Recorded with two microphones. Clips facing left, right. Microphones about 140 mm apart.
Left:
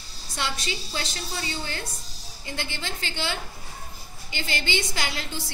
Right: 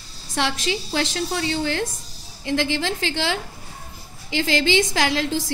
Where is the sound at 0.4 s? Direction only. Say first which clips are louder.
Right 7 dB; 90° right.